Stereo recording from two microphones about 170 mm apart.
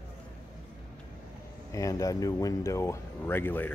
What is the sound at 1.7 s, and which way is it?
Speech, 20° left (ahead or behind).